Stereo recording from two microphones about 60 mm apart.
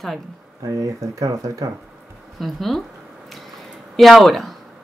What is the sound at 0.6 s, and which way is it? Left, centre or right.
Speech, right.